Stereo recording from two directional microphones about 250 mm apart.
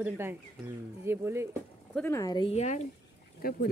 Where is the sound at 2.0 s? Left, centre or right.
Centre; by 3.6 s left.